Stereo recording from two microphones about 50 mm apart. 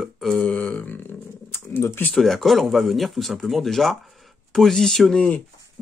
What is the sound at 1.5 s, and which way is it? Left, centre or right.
Speech, left.